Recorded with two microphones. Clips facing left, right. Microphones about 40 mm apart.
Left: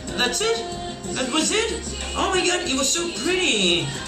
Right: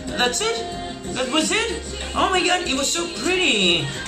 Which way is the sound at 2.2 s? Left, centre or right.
Centre.